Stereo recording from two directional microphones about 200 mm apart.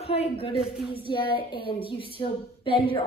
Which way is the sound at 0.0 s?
30° left (ahead or behind).